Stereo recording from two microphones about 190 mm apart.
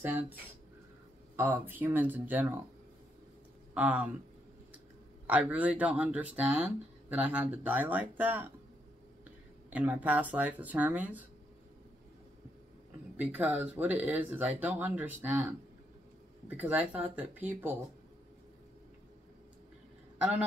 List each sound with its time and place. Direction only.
0.0 s speech: 10° right (ahead or behind)
3.7 s speech: 5° right (ahead or behind)
5.2 s speech: 5° right (ahead or behind)
9.7 s speech: 10° right (ahead or behind)
13.2 s speech: 10° right (ahead or behind)
16.4 s speech: 10° right (ahead or behind)